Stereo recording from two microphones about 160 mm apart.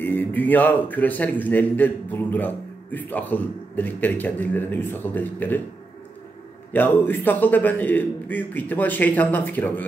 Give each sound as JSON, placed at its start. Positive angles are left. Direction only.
{"t": 0.0, "sound": "a man's voice", "side_deg": 10}
{"t": 6.7, "sound": "a man's voice", "side_deg": 10}